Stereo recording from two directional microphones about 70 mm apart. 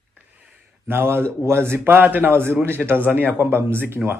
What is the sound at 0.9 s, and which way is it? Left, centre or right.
A man's voice, right.